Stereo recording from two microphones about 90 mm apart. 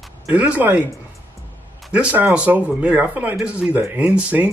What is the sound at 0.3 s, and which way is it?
Speech, 15° right (ahead or behind).